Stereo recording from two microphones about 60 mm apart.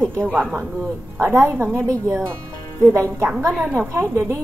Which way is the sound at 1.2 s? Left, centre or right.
Right.